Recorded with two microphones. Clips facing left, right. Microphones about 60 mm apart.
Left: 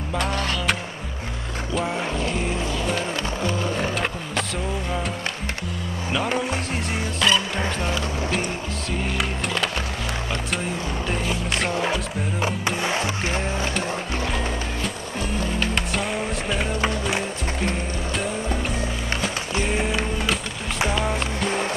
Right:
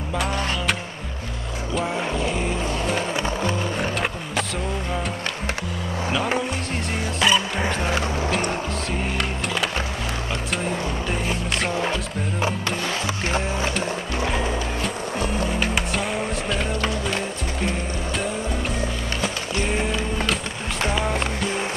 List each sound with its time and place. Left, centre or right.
0.1 s music: centre
1.8 s music: centre
3.7 s music: centre
7.2 s music: centre
9.2 s music: centre
11.1 s music: centre
12.6 s music: centre
13.7 s music: centre
19.6 s music: centre